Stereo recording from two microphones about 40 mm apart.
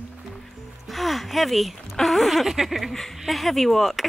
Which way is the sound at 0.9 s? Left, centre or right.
Centre.